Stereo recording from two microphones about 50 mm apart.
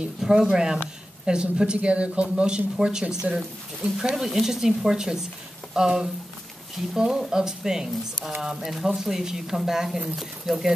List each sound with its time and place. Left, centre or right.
0.2 s a woman's voice: centre